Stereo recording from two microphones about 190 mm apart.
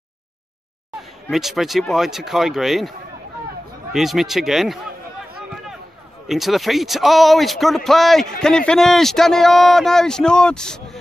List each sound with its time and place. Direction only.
1.3 s a man's voice: centre (ahead or behind)
3.9 s a man's voice: centre (ahead or behind)
6.2 s a man's voice: centre (ahead or behind)